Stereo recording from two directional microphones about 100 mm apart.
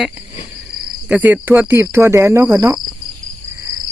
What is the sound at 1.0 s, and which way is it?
Speech, 15° right (ahead or behind).